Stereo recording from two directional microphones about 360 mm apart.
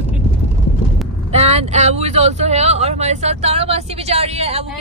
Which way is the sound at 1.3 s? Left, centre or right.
Centre.